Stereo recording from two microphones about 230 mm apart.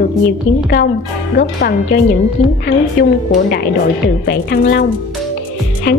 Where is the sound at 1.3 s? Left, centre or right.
Left.